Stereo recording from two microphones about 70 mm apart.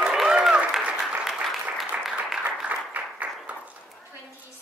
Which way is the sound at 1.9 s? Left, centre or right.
Right.